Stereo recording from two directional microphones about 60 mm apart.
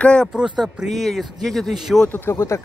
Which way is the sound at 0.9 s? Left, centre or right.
Centre.